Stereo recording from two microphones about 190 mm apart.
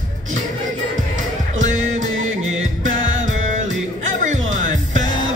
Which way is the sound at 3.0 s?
90° right.